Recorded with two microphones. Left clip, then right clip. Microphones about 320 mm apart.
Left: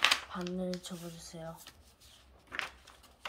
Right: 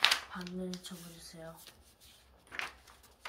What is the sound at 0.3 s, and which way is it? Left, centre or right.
Speech, left.